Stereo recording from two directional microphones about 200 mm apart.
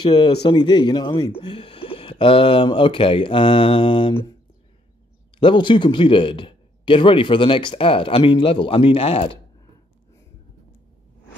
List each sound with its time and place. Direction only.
0.0 s a man's voice: 20° left (ahead or behind)
5.4 s a man's voice: 25° left (ahead or behind)